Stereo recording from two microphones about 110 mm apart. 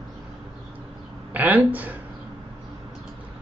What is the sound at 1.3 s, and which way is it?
Speech, 15° right (ahead or behind).